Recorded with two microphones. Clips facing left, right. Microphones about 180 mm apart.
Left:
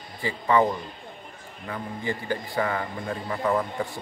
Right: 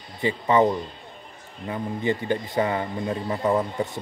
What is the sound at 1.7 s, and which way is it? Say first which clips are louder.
Speech: right 5 dB; 20° right (ahead or behind).